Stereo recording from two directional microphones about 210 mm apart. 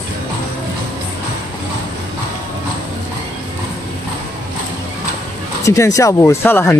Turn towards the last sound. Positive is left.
turn(degrees=10)  # may be behind; listen again after turning